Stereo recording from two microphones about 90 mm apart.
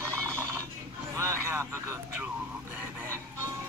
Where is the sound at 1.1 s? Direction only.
35° right (ahead or behind).